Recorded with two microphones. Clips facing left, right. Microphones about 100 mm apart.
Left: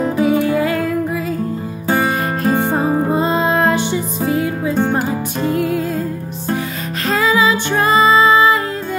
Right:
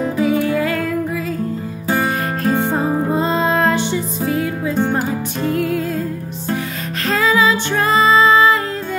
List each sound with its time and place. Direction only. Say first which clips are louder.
0.2 s music: left 2 dB; 25° left (ahead or behind)